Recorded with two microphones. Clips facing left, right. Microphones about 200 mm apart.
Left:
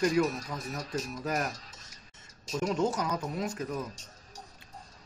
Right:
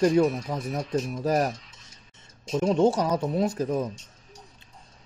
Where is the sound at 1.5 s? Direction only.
40° left (ahead or behind).